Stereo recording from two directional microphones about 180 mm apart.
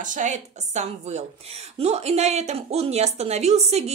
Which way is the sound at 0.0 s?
45° right (ahead or behind).